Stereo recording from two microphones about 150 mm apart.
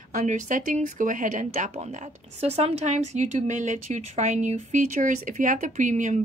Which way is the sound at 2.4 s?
45° right (ahead or behind).